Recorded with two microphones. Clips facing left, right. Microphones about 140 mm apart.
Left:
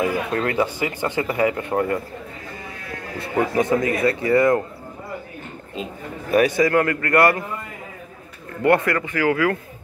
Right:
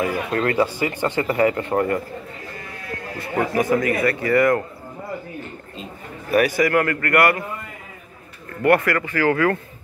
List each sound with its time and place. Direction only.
0.0 s speech: 15° left (ahead or behind)
3.7 s a man's voice: 20° left (ahead or behind)
6.3 s a man's voice: 20° left (ahead or behind)
8.6 s speech: 20° left (ahead or behind)